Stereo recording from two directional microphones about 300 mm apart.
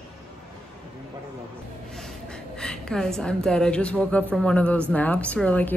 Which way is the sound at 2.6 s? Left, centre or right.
Centre.